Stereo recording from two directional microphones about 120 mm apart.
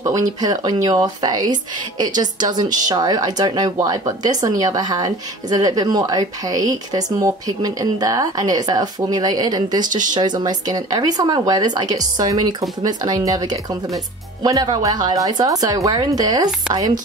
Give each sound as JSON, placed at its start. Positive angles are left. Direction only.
{"t": 0.0, "sound": "speech", "side_deg": -30}